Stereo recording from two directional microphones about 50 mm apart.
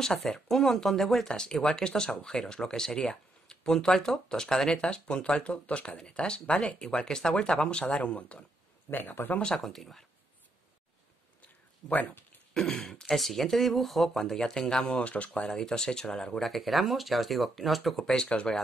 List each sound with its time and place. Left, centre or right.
0.0 s speech: centre
8.9 s speech: left
9.6 s speech: centre
12.5 s speech: centre
15.0 s speech: left
15.5 s speech: centre
18.0 s speech: centre